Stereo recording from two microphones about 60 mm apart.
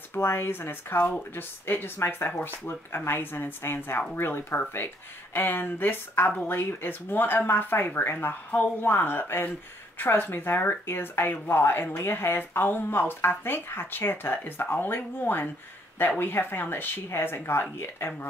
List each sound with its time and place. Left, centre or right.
0.1 s speech: left